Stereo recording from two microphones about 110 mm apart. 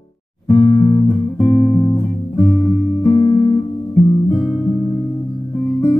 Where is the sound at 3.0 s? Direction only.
40° left (ahead or behind).